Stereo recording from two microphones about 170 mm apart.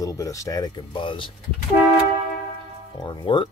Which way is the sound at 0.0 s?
20° left (ahead or behind).